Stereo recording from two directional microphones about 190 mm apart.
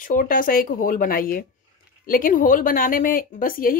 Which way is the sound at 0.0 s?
45° left (ahead or behind).